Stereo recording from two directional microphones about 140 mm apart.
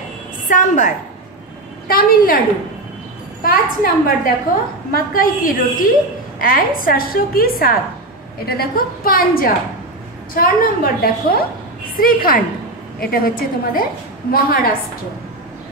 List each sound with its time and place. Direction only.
0.5 s a woman's voice: 70° left (ahead or behind)
1.9 s a woman's voice: 90° left
3.4 s a woman's voice: 90° left